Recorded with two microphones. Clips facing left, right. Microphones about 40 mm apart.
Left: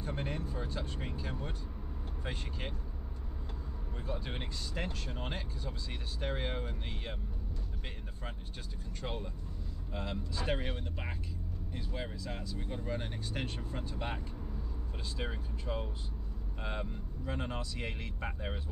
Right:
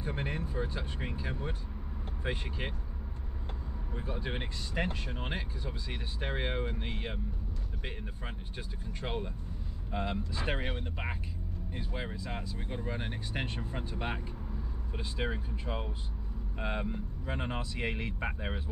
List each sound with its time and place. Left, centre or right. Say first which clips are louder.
0.0 s speech: right 2 dB; centre
3.9 s speech: right 3 dB; centre
9.0 s speech: right 4 dB; right